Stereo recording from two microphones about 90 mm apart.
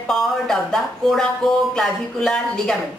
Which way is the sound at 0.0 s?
5° left (ahead or behind).